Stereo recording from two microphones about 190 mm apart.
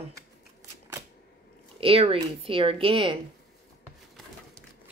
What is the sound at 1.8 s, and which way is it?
Speech, 30° right (ahead or behind).